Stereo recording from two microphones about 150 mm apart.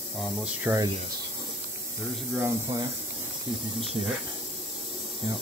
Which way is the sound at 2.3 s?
15° right (ahead or behind).